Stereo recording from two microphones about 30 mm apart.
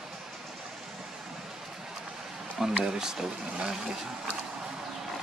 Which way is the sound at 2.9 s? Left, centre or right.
Right.